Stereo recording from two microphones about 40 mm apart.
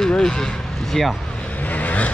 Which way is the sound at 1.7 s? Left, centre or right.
Left.